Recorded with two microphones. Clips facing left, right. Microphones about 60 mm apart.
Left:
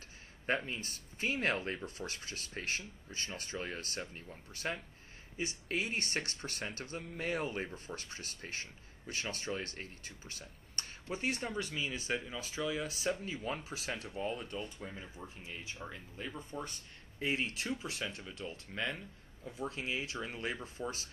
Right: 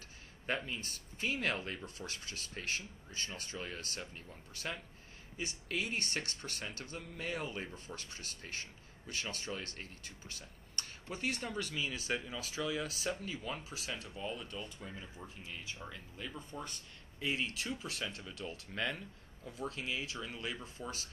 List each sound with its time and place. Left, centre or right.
0.5 s speech: left; by 13.2 s centre
13.2 s speech: left
14.8 s speech: centre; by 17.7 s left
17.8 s speech: centre; by 20.5 s left
20.8 s speech: centre